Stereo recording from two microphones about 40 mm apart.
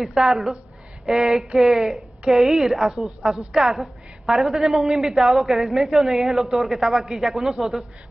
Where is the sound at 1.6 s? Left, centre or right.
Centre.